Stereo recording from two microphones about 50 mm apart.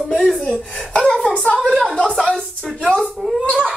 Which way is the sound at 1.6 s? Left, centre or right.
Centre.